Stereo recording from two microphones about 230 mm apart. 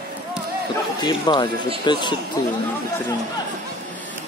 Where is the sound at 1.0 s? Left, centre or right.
Centre.